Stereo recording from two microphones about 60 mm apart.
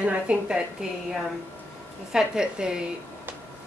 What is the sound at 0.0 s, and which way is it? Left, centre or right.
Speech, centre.